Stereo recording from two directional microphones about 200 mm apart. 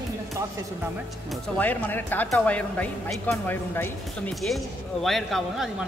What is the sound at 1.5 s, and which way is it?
Speech, 10° left (ahead or behind).